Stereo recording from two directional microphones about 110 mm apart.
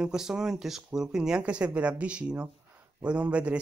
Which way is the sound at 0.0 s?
5° right (ahead or behind).